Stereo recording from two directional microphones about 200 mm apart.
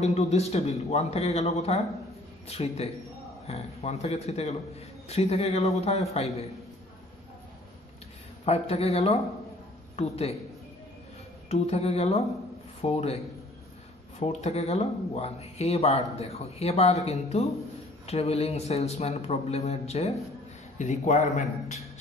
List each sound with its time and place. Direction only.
0.0 s speech: 35° left (ahead or behind)
8.5 s speech: 30° left (ahead or behind)
11.4 s speech: 30° left (ahead or behind)
14.2 s speech: 30° left (ahead or behind)